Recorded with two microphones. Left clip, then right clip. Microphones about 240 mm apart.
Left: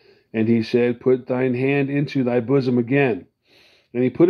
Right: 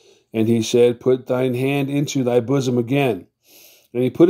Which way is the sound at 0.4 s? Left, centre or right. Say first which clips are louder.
Right 4 dB; right.